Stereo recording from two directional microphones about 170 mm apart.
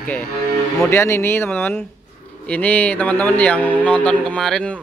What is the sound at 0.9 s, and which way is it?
A man's voice, 15° left (ahead or behind).